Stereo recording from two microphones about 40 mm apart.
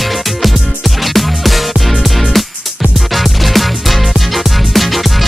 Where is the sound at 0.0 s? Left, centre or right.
Centre.